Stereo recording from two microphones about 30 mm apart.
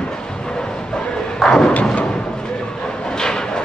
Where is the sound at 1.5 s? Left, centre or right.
Left.